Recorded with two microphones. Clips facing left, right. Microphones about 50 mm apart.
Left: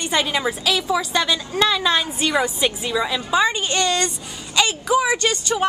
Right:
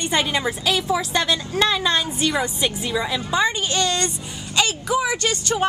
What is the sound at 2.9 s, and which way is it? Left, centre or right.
Speech, centre.